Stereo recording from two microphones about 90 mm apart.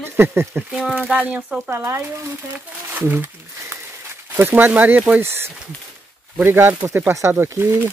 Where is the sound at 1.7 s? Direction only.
25° right (ahead or behind).